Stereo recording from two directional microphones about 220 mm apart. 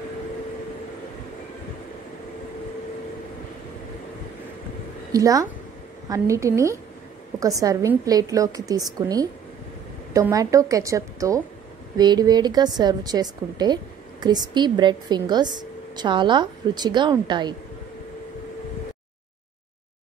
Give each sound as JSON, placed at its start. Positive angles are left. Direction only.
{"t": 5.1, "sound": "a woman's voice", "side_deg": -15}